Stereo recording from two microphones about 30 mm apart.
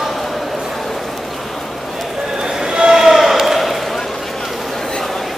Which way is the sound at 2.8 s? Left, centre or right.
Centre.